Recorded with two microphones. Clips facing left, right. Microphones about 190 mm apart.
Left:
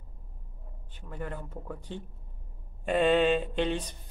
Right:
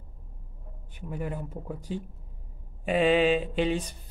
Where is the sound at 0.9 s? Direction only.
10° right (ahead or behind).